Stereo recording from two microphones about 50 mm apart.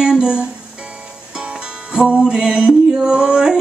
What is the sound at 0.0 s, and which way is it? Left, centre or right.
Music, centre.